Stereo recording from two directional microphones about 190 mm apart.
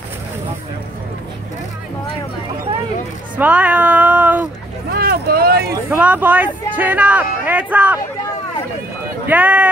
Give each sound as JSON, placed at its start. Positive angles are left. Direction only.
{"t": 3.3, "sound": "speech", "side_deg": -10}
{"t": 4.9, "sound": "speech", "side_deg": -55}
{"t": 5.9, "sound": "speech", "side_deg": -10}
{"t": 9.3, "sound": "speech", "side_deg": -10}